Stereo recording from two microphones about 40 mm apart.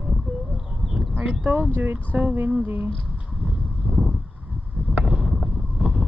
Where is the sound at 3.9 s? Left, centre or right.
Centre.